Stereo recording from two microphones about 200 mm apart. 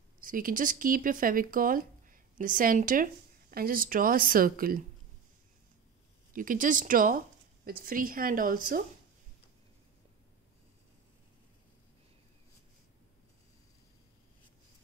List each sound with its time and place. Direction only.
0.2 s speech: 45° right (ahead or behind)
6.3 s speech: 45° right (ahead or behind)